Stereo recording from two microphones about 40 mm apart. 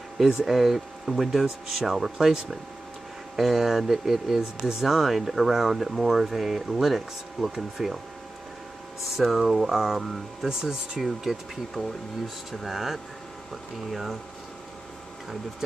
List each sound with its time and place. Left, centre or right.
0.5 s speech: centre
4.8 s speech: centre
9.1 s speech: centre